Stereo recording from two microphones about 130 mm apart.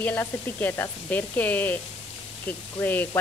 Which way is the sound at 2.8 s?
15° left (ahead or behind).